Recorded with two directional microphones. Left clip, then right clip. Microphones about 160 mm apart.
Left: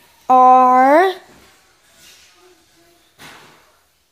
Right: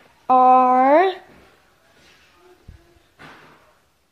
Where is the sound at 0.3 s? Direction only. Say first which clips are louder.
Left 4 dB; 10° left (ahead or behind).